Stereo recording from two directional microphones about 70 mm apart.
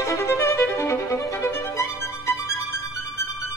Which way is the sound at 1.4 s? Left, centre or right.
Left.